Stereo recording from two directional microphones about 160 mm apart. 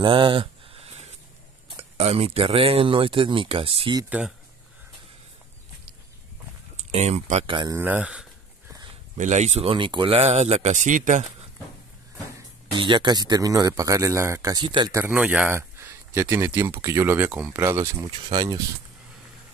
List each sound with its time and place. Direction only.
0.0 s a sound: 30° right (ahead or behind)
1.7 s speech: 35° right (ahead or behind)
6.8 s speech: 45° right (ahead or behind)
7.7 s speech: 10° right (ahead or behind)
9.1 s speech: 45° right (ahead or behind)
12.7 s speech: 30° right (ahead or behind)
15.0 s speech: 10° right (ahead or behind); by 18.6 s 25° right (ahead or behind)